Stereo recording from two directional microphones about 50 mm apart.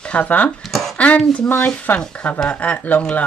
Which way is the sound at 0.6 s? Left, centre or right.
Centre.